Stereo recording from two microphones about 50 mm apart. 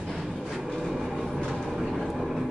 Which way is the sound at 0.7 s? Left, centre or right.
Centre.